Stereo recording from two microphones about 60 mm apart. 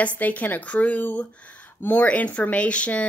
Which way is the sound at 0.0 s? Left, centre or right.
Left.